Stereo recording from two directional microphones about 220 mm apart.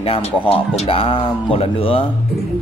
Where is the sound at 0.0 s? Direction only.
25° left (ahead or behind).